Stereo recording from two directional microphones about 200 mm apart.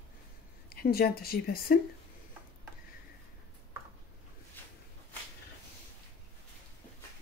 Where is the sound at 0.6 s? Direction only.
50° left (ahead or behind).